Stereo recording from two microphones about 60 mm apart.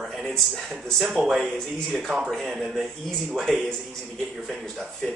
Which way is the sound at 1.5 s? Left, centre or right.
Centre.